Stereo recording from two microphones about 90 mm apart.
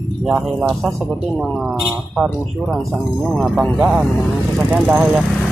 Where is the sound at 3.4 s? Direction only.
10° right (ahead or behind).